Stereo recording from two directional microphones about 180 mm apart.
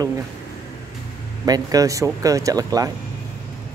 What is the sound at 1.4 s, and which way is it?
Speech, 20° right (ahead or behind).